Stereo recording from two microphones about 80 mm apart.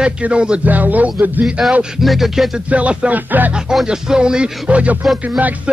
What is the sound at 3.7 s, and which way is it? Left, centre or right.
A man's voice, centre.